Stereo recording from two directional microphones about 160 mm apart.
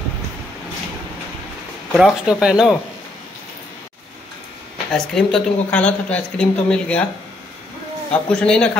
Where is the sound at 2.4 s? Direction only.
5° right (ahead or behind).